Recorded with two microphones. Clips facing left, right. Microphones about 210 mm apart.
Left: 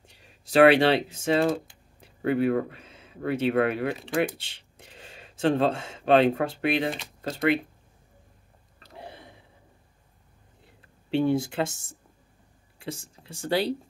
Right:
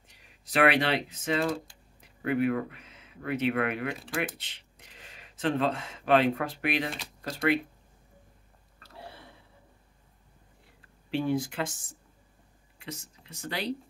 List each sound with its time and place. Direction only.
0.1 s speech: 30° left (ahead or behind)
8.7 s a sound: 20° left (ahead or behind)
11.1 s speech: 25° left (ahead or behind)